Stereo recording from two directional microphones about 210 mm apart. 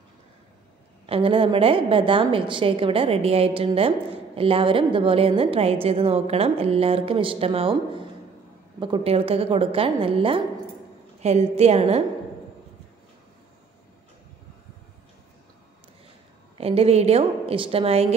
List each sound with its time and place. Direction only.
1.0 s a woman's voice: 25° right (ahead or behind)
16.5 s a woman's voice: 30° right (ahead or behind)